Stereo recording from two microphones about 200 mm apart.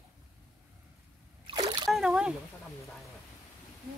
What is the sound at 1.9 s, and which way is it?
Splash, centre (ahead or behind).